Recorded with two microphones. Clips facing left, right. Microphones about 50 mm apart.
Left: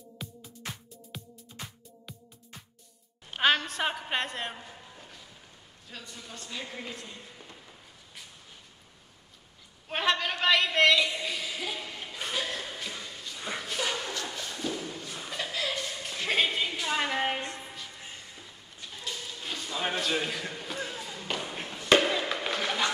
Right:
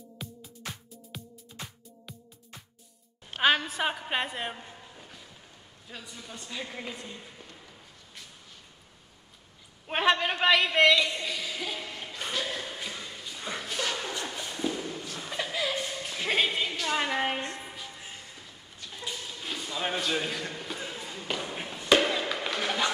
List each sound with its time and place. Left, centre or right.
0.2 s music: centre
3.3 s a woman's voice: centre
4.9 s music: centre
5.9 s a woman's voice: centre
9.8 s a man's voice: centre
11.0 s a sound: centre
14.1 s a sound: centre
15.4 s chuckle: centre
15.9 s a sound: centre
16.9 s a woman's voice: centre
17.6 s music: centre
18.9 s a sound: centre
21.3 s basketball bounce: centre
21.8 s fireworks: centre